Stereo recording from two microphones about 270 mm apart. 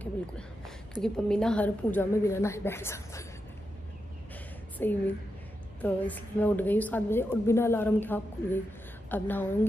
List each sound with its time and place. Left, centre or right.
0.0 s a sound: centre
1.0 s a woman's voice: centre
4.7 s a woman's voice: centre